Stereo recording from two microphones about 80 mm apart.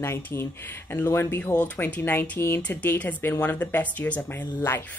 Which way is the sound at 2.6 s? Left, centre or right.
Centre.